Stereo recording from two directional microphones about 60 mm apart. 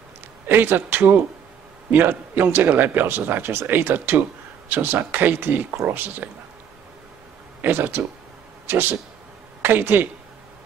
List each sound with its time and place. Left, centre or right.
0.5 s a man's voice: right
7.6 s a man's voice: right